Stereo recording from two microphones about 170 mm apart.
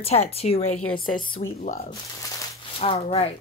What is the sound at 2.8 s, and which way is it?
Speech, 35° left (ahead or behind).